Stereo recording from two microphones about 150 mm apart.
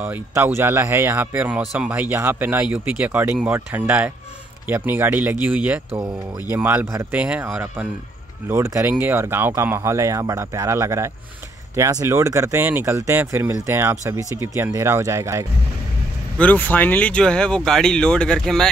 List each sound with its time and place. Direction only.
0.0 s speech: 15° right (ahead or behind)
16.3 s speech: 10° left (ahead or behind)